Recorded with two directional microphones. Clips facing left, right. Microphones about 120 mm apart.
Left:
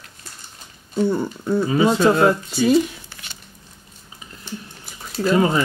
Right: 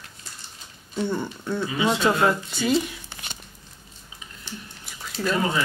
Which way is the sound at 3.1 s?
20° right (ahead or behind).